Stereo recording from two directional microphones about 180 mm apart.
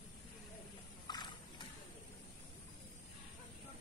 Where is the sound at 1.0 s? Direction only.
25° left (ahead or behind).